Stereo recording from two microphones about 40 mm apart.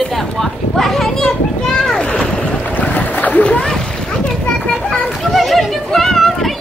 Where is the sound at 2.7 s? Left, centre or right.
Left.